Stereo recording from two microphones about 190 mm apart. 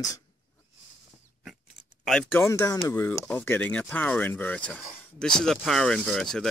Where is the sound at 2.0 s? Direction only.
5° left (ahead or behind).